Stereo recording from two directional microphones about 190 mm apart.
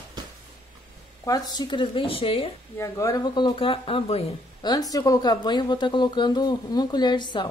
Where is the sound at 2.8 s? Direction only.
15° left (ahead or behind).